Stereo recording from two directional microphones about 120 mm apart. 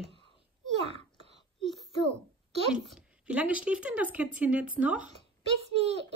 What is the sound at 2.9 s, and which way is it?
A woman's voice, 10° right (ahead or behind).